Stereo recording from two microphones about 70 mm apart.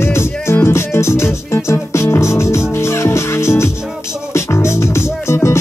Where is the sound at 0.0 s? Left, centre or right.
Left.